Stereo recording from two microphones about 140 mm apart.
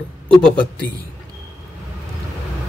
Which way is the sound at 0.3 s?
10° left (ahead or behind).